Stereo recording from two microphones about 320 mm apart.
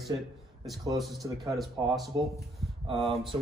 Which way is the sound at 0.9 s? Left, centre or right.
Centre.